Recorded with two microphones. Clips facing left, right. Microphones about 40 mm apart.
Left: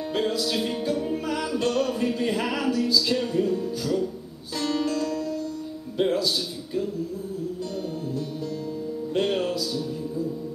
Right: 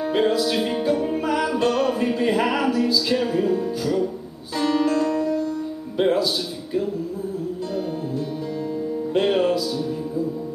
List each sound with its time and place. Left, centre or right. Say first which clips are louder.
0.0 s music: right 6 dB; centre
5.9 s a man's voice: right 4 dB; centre
9.1 s music: right 5 dB; centre